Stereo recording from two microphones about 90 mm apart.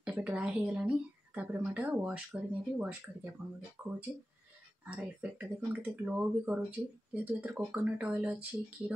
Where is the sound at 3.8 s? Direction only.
5° right (ahead or behind).